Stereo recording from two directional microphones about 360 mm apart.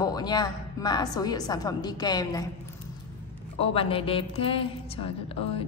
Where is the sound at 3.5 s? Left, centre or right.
Centre.